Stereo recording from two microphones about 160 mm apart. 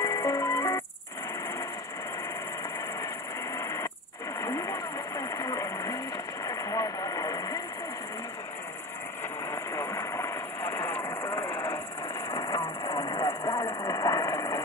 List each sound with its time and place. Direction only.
0.0 s music: 20° left (ahead or behind)
3.5 s wheeze: 20° left (ahead or behind)
4.4 s vehicle: 20° left (ahead or behind)
9.5 s vehicle: 15° left (ahead or behind)
12.3 s vehicle: 25° left (ahead or behind)